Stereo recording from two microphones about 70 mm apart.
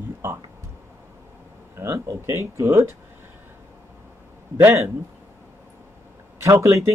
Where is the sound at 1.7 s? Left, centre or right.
Right.